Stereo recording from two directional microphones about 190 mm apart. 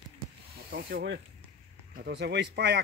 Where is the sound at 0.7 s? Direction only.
55° right (ahead or behind).